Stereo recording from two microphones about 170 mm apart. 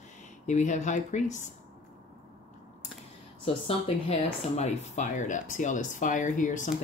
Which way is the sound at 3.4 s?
35° left (ahead or behind).